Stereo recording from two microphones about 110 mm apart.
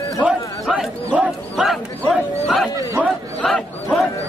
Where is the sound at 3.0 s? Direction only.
5° left (ahead or behind).